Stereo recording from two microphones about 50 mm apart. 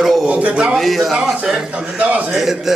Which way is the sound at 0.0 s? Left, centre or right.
Centre.